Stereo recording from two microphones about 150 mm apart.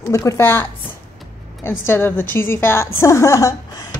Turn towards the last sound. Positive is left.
turn(degrees=20)  # may be behind; listen again after turning